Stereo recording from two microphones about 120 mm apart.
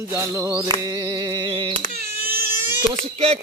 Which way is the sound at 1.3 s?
40° right (ahead or behind).